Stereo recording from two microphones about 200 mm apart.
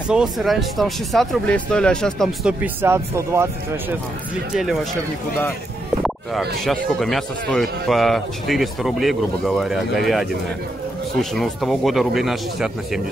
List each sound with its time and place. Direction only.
0.1 s speech: centre (ahead or behind)
6.6 s speech: centre (ahead or behind)